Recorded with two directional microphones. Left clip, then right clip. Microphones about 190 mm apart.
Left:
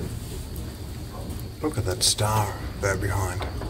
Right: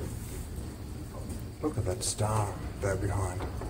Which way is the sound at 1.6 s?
5° right (ahead or behind).